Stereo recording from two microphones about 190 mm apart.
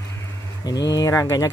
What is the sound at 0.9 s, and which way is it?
Speech, 15° left (ahead or behind).